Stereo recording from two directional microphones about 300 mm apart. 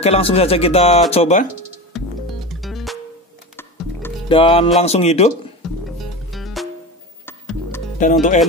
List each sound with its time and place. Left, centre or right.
0.0 s speech: centre
2.0 s music: centre
3.5 s music: centre
4.8 s speech: left
6.3 s music: centre
8.0 s speech: left